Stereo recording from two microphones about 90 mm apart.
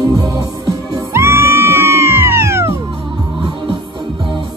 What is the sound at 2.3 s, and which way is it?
Cat, 30° right (ahead or behind).